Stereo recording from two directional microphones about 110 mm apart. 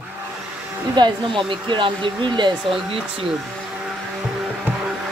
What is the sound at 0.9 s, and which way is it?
Speech, 45° right (ahead or behind).